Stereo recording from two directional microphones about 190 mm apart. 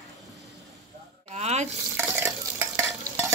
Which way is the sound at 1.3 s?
35° right (ahead or behind).